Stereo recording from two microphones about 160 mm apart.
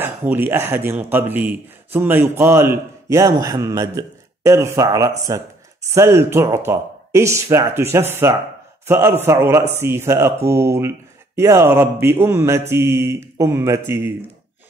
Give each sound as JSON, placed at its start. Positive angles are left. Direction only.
{"t": 0.0, "sound": "a man's voice", "side_deg": -10}